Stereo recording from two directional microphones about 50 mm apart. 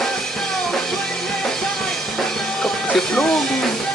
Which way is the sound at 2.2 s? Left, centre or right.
Centre.